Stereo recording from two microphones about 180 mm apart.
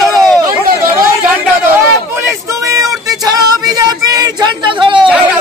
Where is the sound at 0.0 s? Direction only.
Centre (ahead or behind).